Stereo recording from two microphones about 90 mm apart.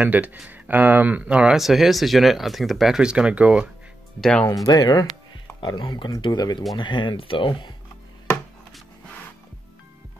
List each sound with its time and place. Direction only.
0.0 s speech: 15° right (ahead or behind)
4.2 s speech: 10° left (ahead or behind)
4.6 s speech: 50° left (ahead or behind)
6.8 s speech: 65° left (ahead or behind)